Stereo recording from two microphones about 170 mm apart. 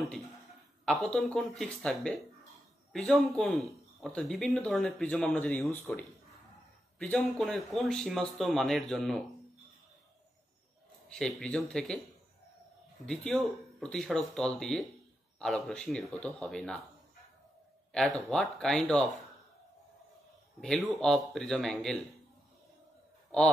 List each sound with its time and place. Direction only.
0.8 s speech: 5° left (ahead or behind)
11.1 s speech: 5° left (ahead or behind)
13.0 s speech: 5° left (ahead or behind)
17.9 s speech: 5° left (ahead or behind)
20.6 s speech: 5° left (ahead or behind)